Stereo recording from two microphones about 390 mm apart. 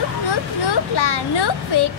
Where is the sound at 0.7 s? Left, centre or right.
Left.